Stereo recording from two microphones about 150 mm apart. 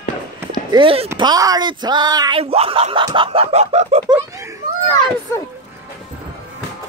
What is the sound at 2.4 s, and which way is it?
Speech, 40° right (ahead or behind).